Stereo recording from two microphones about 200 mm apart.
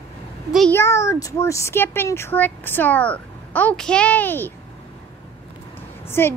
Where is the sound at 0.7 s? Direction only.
15° left (ahead or behind).